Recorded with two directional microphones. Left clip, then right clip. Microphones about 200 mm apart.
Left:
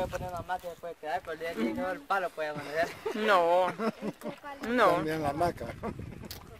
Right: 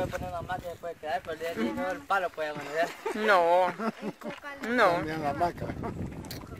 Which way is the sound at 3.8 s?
45° left (ahead or behind).